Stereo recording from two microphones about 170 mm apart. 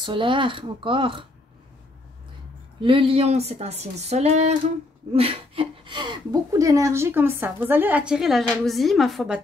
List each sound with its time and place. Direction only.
0.0 s speech: 30° right (ahead or behind)
2.8 s speech: 30° right (ahead or behind); by 9.4 s centre (ahead or behind)